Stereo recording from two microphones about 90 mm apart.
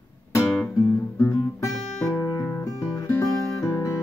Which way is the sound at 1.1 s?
30° left (ahead or behind).